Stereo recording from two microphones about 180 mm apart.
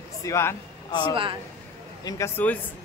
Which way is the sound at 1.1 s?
30° right (ahead or behind).